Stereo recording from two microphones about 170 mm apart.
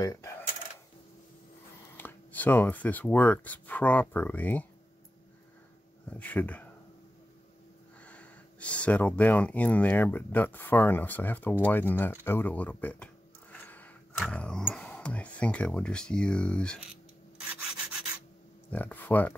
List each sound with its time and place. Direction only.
0.0 s a sound: 20° left (ahead or behind)
2.0 s speech: 10° left (ahead or behind)
6.0 s speech: 10° left (ahead or behind)
8.0 s speech: 10° left (ahead or behind)
12.3 s a sound: 10° left (ahead or behind)
14.1 s speech: 5° left (ahead or behind)
18.7 s speech: 10° left (ahead or behind)